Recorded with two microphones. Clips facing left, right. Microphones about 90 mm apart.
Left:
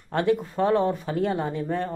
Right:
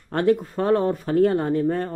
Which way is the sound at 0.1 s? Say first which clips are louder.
Right 3 dB; 40° right (ahead or behind).